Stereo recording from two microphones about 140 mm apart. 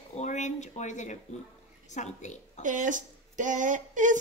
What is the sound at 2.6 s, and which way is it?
Speech, 65° right (ahead or behind).